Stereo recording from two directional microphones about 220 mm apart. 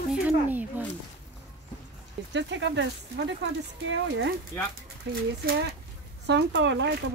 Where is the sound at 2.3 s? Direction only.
55° right (ahead or behind).